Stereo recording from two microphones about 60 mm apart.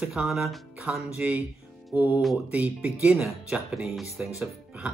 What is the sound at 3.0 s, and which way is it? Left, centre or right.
Speech, centre.